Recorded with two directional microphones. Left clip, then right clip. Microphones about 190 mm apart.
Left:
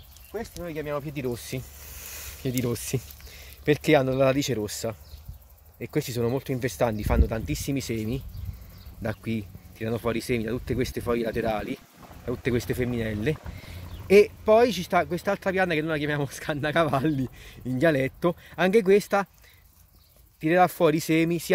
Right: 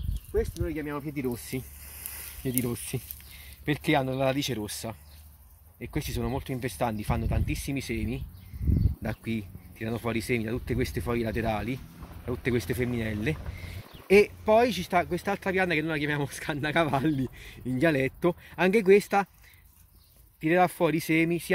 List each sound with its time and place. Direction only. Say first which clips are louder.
0.7 s speech: left 3 dB; 45° left (ahead or behind)
20.3 s speech: left 3 dB; 50° left (ahead or behind)